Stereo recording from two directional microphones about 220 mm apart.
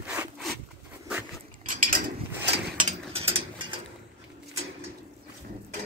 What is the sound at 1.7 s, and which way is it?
Mechanisms, 40° right (ahead or behind).